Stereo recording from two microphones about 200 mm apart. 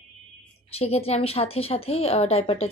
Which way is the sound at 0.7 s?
30° left (ahead or behind).